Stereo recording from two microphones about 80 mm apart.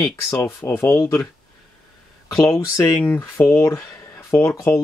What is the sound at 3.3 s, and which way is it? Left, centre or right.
Speech, left.